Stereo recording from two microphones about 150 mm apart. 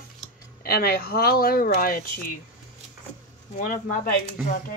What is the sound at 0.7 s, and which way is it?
Speech, 90° left.